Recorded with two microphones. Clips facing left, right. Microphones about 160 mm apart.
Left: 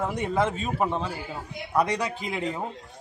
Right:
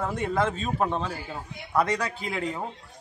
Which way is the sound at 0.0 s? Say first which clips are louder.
Left 1 dB; 15° left (ahead or behind).